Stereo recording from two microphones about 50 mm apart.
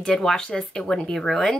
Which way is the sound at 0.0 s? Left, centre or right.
Centre.